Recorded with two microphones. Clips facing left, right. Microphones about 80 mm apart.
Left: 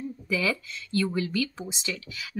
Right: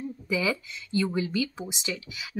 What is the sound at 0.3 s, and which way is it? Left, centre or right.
Speech, centre.